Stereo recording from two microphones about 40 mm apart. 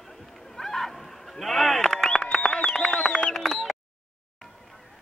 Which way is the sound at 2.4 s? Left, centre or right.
Left.